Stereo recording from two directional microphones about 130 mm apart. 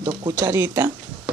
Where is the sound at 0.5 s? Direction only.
20° right (ahead or behind).